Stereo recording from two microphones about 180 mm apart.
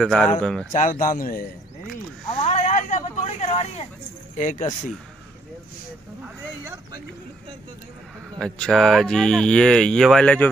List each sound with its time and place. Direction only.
0.0 s speech: 5° left (ahead or behind)
0.7 s speech: 45° left (ahead or behind)
2.4 s a sound: 35° left (ahead or behind)
4.4 s speech: 45° left (ahead or behind)
8.4 s speech: 5° left (ahead or behind)